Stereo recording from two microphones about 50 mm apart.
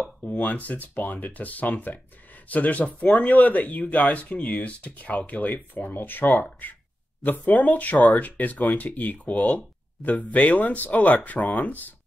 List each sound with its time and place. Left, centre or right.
0.0 s speech: centre
0.4 s speech: left